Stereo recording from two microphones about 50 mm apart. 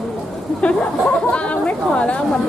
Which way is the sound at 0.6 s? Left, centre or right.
Left.